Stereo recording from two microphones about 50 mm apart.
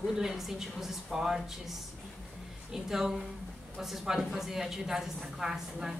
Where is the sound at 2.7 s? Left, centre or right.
Centre.